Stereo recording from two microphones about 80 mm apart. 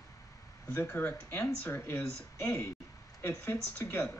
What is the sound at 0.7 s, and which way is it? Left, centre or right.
Speech, left.